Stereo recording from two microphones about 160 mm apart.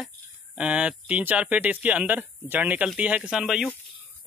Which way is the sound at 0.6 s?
5° right (ahead or behind).